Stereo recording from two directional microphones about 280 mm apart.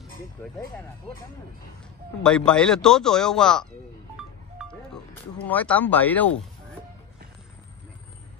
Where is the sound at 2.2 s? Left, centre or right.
Centre.